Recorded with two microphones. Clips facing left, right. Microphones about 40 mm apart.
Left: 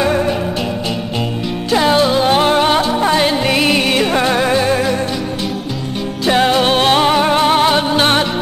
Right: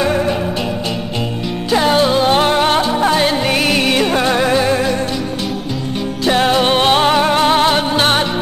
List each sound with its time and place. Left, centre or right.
0.0 s music: centre
1.7 s music: centre
6.2 s music: centre